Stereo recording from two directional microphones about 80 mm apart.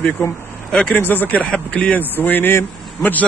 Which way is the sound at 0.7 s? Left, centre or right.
Centre.